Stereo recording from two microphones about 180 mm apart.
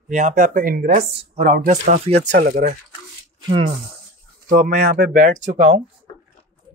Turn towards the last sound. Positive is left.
turn(degrees=-40)  # may be behind; listen again after turning